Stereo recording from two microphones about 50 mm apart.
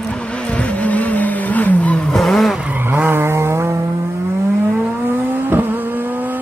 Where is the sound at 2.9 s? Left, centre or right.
Right.